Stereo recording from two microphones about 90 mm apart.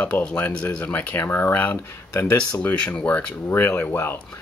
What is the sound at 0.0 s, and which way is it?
Speech, 15° left (ahead or behind).